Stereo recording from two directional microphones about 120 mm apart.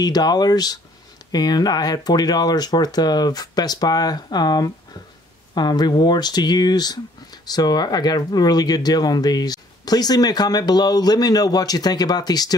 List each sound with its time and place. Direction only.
0.0 s speech: 35° left (ahead or behind)